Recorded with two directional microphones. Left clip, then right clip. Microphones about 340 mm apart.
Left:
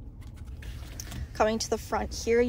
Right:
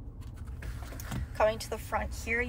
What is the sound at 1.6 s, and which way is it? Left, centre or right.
Speech, centre.